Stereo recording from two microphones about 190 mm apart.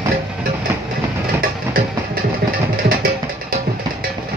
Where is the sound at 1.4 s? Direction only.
50° right (ahead or behind).